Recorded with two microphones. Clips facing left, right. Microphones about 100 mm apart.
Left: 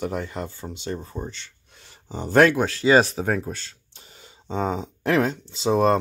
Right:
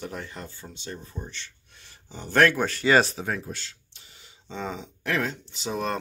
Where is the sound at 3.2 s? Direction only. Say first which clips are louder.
Left 6 dB; 40° left (ahead or behind).